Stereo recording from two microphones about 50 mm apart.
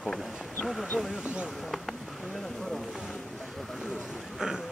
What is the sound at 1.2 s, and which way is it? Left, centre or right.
Speech, right.